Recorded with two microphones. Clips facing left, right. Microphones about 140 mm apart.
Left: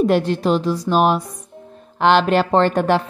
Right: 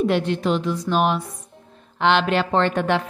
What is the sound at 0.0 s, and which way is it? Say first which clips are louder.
A woman's voice: left 4 dB; 40° left (ahead or behind).